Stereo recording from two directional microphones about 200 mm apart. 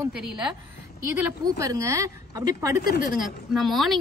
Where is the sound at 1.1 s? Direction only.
10° right (ahead or behind).